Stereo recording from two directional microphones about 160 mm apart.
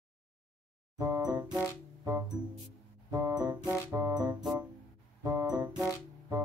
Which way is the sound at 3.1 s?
20° right (ahead or behind).